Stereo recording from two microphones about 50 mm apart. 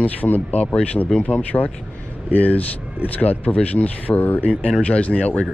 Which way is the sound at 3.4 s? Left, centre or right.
Left.